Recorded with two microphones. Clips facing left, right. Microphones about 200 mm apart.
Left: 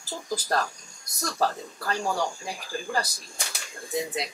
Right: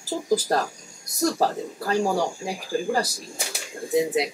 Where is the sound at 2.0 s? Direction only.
30° right (ahead or behind).